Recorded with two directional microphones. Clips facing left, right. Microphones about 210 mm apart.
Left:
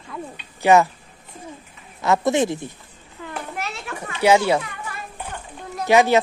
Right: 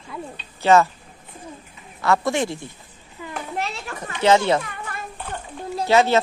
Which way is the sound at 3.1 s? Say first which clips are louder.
Even; 5° right (ahead or behind).